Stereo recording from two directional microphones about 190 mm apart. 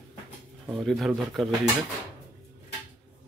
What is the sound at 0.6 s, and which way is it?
Speech, centre (ahead or behind).